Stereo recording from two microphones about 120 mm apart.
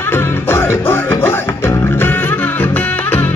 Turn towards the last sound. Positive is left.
turn(degrees=15)  # may be behind; listen again after turning